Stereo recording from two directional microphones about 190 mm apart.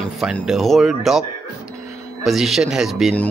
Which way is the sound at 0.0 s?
5° right (ahead or behind).